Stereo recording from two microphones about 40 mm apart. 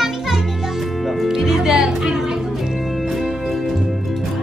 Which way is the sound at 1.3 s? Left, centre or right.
Centre.